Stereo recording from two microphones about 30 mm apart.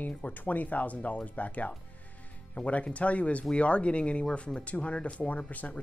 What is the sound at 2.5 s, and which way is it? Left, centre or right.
Speech, left.